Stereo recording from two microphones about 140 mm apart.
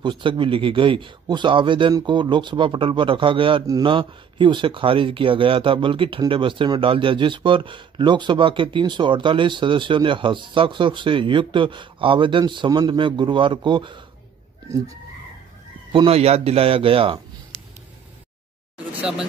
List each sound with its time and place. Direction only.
0.0 s speech: 35° right (ahead or behind)
15.9 s a man's voice: 40° right (ahead or behind)
18.9 s vehicle: 10° right (ahead or behind)